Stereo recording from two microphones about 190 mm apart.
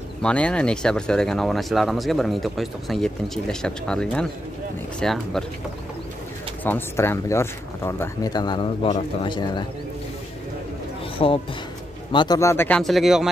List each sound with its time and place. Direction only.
0.2 s speech: 5° left (ahead or behind)
6.6 s speech: 10° left (ahead or behind)
11.2 s speech: 30° left (ahead or behind); by 13.3 s centre (ahead or behind)